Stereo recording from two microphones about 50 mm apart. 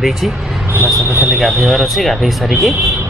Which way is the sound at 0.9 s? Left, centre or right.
Right.